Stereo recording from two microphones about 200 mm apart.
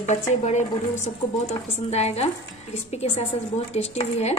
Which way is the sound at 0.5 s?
35° left (ahead or behind).